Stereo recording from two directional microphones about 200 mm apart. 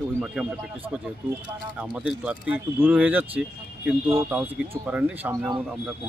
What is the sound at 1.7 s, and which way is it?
Speech, 5° right (ahead or behind).